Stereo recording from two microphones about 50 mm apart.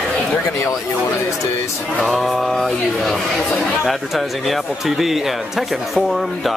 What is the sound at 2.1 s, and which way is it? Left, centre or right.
Speech, centre.